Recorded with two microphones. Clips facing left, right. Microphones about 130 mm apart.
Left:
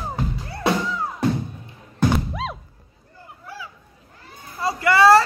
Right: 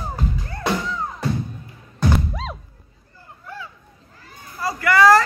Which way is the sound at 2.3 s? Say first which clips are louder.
Left 2 dB; centre (ahead or behind).